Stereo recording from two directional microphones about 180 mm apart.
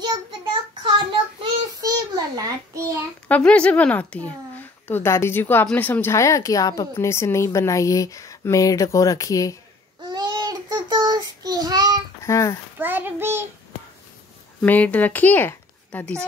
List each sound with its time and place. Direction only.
0.0 s child singing: 25° right (ahead or behind)
3.3 s speech: 5° left (ahead or behind)
10.0 s child singing: 20° right (ahead or behind)
12.2 s a child's voice: 15° left (ahead or behind)
12.7 s child singing: 10° right (ahead or behind)
14.6 s speech: 10° left (ahead or behind)